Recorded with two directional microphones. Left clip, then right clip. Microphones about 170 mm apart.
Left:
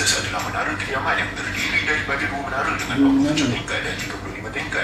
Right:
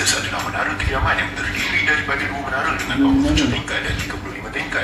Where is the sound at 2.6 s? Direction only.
25° right (ahead or behind).